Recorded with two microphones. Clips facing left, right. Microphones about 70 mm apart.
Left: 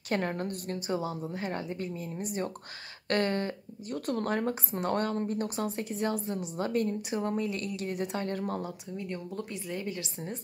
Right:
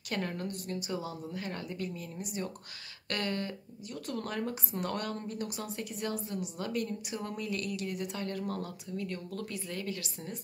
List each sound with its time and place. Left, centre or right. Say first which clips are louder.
0.1 s a woman's voice: left 5 dB; left
8.5 s speech: left 2 dB; left